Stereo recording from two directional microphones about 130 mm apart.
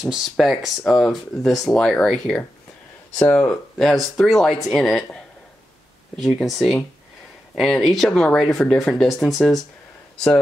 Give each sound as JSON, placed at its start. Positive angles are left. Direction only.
{"t": 0.0, "sound": "speech", "side_deg": -5}